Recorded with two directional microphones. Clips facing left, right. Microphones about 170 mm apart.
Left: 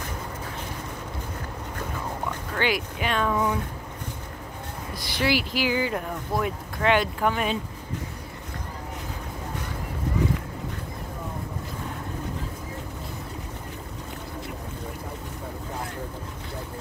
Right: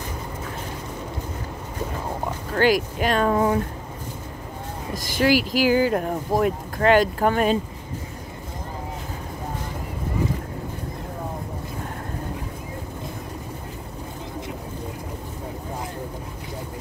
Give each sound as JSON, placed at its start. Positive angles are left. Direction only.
{"t": 2.5, "sound": "speech", "side_deg": -40}
{"t": 4.9, "sound": "speech", "side_deg": -45}